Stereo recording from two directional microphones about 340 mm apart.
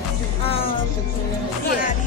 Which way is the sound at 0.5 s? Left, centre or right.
Centre.